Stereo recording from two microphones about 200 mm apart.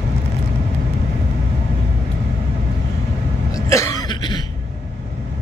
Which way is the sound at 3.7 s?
15° left (ahead or behind).